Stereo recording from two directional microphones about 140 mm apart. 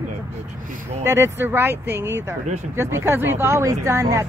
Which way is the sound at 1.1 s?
20° right (ahead or behind).